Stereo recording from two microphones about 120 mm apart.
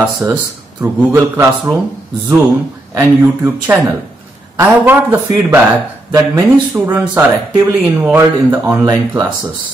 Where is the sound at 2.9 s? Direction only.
25° right (ahead or behind).